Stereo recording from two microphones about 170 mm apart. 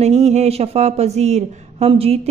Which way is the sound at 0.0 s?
40° right (ahead or behind).